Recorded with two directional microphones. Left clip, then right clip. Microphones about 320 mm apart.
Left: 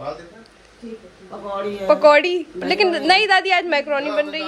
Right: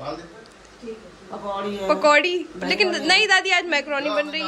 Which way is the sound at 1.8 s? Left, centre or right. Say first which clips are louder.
Left 4 dB; centre.